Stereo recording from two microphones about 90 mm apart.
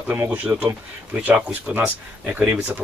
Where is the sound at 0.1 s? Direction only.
20° right (ahead or behind).